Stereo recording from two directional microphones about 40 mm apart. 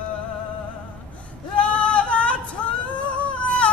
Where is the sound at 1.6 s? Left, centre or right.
Left.